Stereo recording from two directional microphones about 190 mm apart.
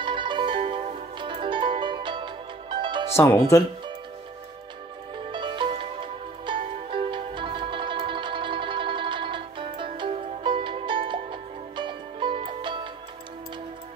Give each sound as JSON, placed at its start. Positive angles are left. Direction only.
{"t": 0.0, "sound": "music", "side_deg": -25}
{"t": 3.2, "sound": "speech", "side_deg": 15}
{"t": 5.3, "sound": "music", "side_deg": -25}